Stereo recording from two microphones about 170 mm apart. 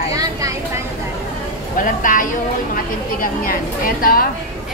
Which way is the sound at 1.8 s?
50° left (ahead or behind).